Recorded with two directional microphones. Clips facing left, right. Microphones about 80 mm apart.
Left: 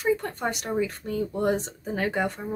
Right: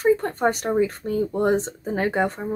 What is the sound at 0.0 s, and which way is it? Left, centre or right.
Speech, right.